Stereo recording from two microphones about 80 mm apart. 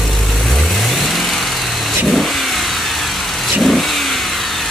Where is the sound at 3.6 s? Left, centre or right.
Centre.